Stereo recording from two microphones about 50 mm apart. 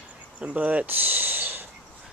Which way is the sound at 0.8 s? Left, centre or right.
Right.